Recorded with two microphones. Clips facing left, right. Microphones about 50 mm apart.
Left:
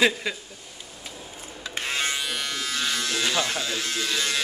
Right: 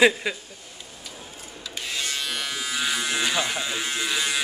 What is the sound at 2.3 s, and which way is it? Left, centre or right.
Speech, centre.